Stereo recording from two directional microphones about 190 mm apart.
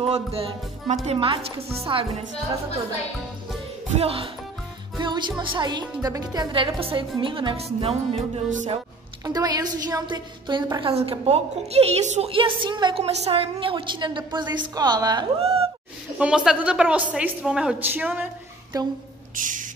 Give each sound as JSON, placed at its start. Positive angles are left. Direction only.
{"t": 0.0, "sound": "music", "side_deg": -30}
{"t": 1.0, "sound": "a woman's voice", "side_deg": -30}
{"t": 4.0, "sound": "music", "side_deg": -30}
{"t": 5.4, "sound": "a woman's voice", "side_deg": -25}
{"t": 7.8, "sound": "music", "side_deg": -30}
{"t": 9.2, "sound": "a woman's voice", "side_deg": -20}
{"t": 16.2, "sound": "a woman's voice", "side_deg": -5}
{"t": 19.3, "sound": "owl", "side_deg": -45}